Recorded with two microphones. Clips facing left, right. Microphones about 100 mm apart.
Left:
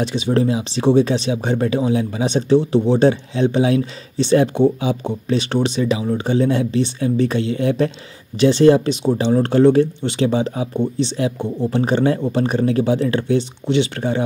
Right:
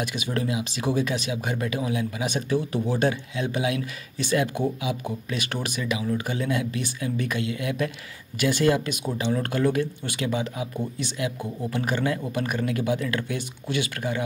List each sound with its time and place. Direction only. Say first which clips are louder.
0.0 s speech: left 10 dB; 25° left (ahead or behind)